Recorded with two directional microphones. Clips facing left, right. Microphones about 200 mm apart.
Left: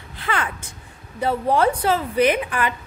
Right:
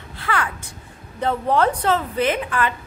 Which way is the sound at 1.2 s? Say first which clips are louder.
Even; 10° left (ahead or behind).